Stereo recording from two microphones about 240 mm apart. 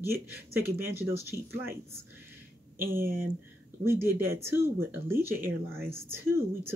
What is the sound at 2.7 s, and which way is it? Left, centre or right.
Speech, right.